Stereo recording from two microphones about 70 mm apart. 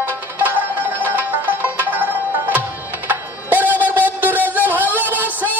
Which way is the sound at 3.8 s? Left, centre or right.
Right.